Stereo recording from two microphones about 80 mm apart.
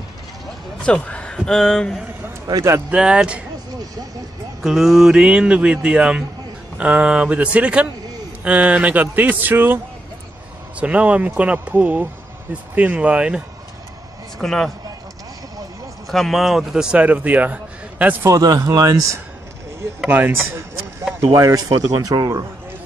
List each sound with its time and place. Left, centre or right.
0.8 s a man's voice: centre
2.9 s speech: centre
4.6 s a man's voice: centre; by 9.8 s right
10.8 s speech: centre
14.4 s speech: centre
16.1 s speech: centre
17.0 s a man's voice: centre
18.2 s speech: right
20.1 s a man's voice: right
21.2 s speech: right